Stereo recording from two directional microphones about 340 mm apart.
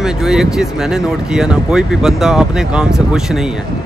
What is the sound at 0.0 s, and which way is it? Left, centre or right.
Speech, centre.